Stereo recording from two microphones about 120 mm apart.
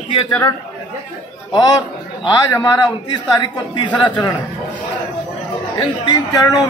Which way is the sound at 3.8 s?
10° left (ahead or behind).